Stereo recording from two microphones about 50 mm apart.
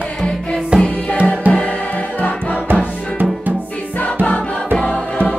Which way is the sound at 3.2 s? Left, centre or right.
Right.